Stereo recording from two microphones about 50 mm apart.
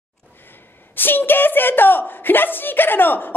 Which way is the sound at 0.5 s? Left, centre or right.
Left.